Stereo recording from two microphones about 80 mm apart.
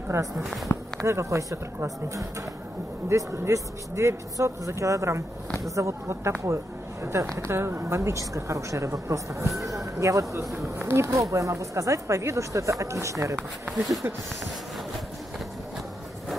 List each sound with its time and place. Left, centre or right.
0.4 s speech: centre
1.0 s speech: right